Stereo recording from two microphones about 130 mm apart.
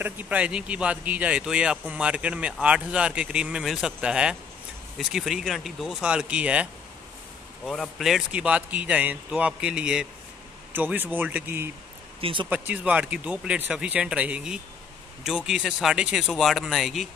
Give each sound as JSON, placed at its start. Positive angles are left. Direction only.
{"t": 0.0, "sound": "a man's voice", "side_deg": -10}
{"t": 7.6, "sound": "a man's voice", "side_deg": 5}
{"t": 12.2, "sound": "speech", "side_deg": -45}
{"t": 12.4, "sound": "a man's voice", "side_deg": -15}